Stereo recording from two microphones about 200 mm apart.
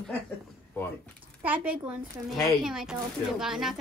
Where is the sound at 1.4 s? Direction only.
10° right (ahead or behind).